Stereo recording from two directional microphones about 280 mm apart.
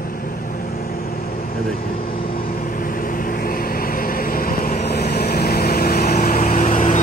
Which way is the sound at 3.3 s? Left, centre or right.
Left.